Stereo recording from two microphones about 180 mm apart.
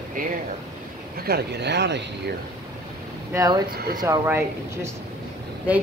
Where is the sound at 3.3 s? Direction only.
15° right (ahead or behind).